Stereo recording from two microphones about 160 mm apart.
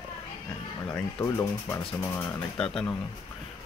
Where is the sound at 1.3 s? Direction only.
20° left (ahead or behind).